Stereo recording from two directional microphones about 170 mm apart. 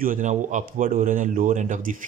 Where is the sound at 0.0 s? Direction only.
50° right (ahead or behind).